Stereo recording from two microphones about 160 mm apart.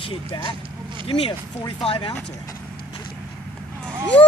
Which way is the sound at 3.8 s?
10° left (ahead or behind).